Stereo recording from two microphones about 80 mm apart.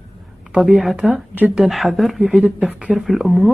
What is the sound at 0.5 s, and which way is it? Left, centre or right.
Speech, centre.